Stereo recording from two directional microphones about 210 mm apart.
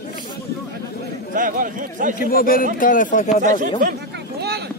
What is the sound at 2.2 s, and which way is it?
Speech, 45° left (ahead or behind).